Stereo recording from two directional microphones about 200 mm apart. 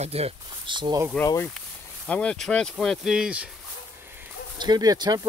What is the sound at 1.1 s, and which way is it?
Speech, 10° left (ahead or behind).